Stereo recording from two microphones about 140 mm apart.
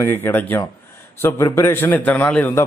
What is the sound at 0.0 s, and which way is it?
A man's voice, 15° left (ahead or behind).